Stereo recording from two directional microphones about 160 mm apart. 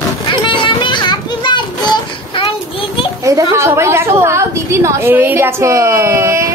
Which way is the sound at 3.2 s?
20° right (ahead or behind).